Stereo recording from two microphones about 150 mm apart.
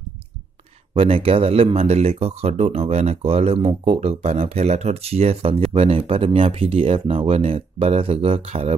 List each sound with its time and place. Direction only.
0.9 s speech: 40° right (ahead or behind)